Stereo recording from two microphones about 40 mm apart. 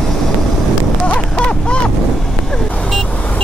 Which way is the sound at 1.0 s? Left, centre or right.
Left.